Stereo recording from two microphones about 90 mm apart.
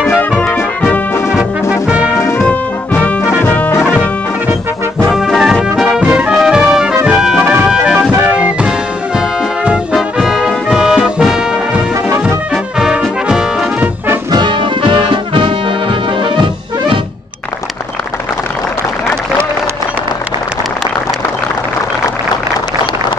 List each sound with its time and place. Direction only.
0.4 s music: 15° left (ahead or behind)
1.3 s brass instrument: 10° right (ahead or behind)
2.1 s brass instrument: 30° left (ahead or behind)
3.4 s brass instrument: 15° left (ahead or behind)
5.1 s brass instrument: 5° right (ahead or behind)
7.1 s music: 5° right (ahead or behind)
9.9 s brass instrument: 5° right (ahead or behind)
12.7 s brass instrument: 5° right (ahead or behind)
14.3 s music: 60° right (ahead or behind)